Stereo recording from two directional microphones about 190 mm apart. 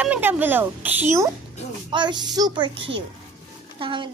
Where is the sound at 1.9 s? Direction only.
25° right (ahead or behind).